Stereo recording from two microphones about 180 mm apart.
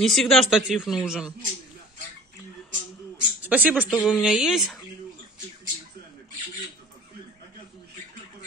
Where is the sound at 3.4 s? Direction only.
10° right (ahead or behind).